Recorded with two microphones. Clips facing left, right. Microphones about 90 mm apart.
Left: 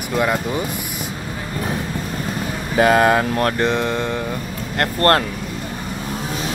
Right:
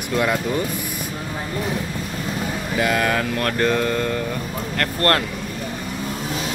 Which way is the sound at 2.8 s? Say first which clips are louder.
Left 7 dB; 30° left (ahead or behind).